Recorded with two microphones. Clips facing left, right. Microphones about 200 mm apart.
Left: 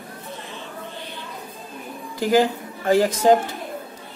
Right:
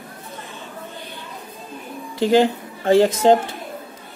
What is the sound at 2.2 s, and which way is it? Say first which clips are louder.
Speech: right 3 dB; 25° right (ahead or behind).